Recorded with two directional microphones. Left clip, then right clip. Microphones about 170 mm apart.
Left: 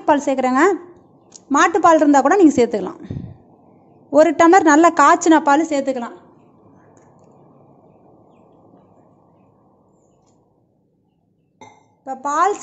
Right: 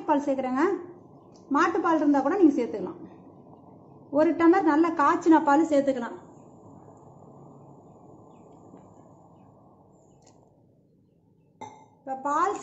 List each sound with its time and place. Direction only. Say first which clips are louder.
0.0 s a woman's voice: left 9 dB; 45° left (ahead or behind)
4.1 s a woman's voice: left 10 dB; 55° left (ahead or behind)
5.6 s a woman's voice: left 4 dB; 30° left (ahead or behind)
12.0 s a woman's voice: left 8 dB; 60° left (ahead or behind)